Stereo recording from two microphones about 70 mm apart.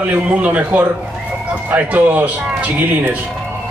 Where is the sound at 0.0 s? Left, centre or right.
Right.